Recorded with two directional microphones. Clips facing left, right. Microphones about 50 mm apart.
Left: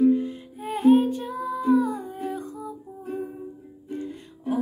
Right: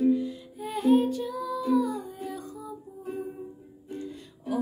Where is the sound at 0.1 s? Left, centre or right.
Left.